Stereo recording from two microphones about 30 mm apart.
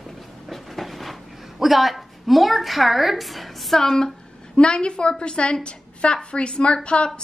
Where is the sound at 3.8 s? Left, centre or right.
Centre.